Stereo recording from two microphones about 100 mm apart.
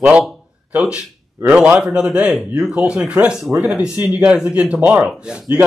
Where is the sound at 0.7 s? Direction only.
10° right (ahead or behind).